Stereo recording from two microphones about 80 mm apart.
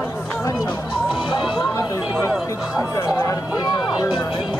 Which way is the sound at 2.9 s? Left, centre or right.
Left.